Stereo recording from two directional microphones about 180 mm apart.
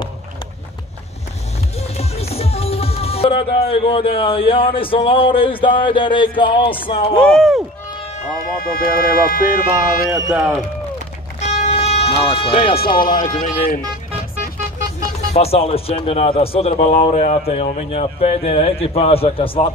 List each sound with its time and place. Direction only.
1.8 s music: 35° left (ahead or behind)
3.6 s speech: 30° left (ahead or behind)
7.2 s speech: 5° left (ahead or behind)
8.7 s speech: 55° left (ahead or behind)
10.1 s speech: 15° right (ahead or behind)
11.3 s music: 40° left (ahead or behind)
12.4 s a man's voice: 30° left (ahead or behind)
15.3 s a man's voice: 35° left (ahead or behind)